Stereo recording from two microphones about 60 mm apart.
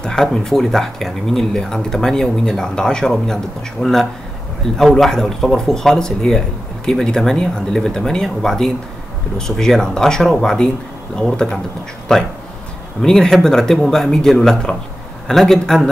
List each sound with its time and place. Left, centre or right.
0.0 s speech: centre
12.1 s speech: centre